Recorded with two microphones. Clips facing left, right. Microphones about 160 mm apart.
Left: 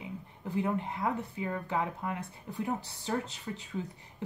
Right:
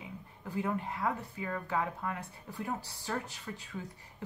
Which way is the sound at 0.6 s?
20° left (ahead or behind).